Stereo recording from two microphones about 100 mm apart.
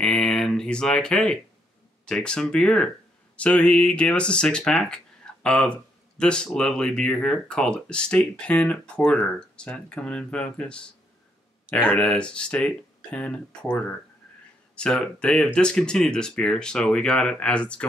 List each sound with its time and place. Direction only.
0.0 s speech: 10° left (ahead or behind)